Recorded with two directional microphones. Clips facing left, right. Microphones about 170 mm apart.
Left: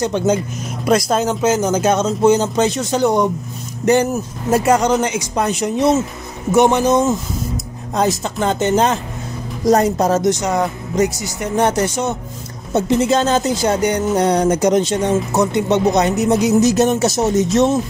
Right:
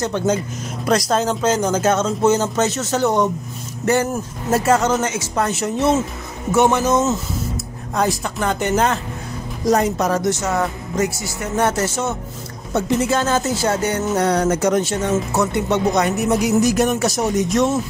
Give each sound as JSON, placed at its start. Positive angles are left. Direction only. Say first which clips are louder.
{"t": 0.0, "sound": "speech", "louder": "left 3 dB", "side_deg": 15}
{"t": 7.9, "sound": "music", "louder": "left 3 dB", "side_deg": 20}
{"t": 9.7, "sound": "music", "louder": "left 3 dB", "side_deg": 35}